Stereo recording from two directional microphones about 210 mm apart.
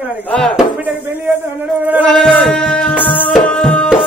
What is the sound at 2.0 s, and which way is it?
Music, 5° left (ahead or behind).